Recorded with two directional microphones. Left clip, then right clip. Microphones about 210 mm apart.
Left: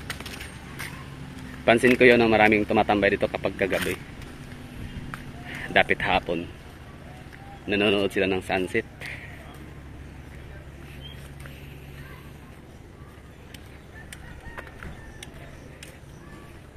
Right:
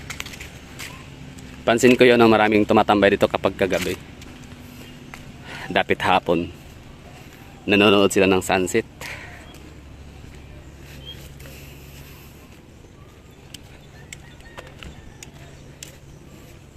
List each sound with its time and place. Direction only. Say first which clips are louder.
1.7 s speech: right 2 dB; 25° right (ahead or behind)
5.6 s speech: right 1 dB; 30° right (ahead or behind)
7.6 s speech: right 7 dB; 45° right (ahead or behind)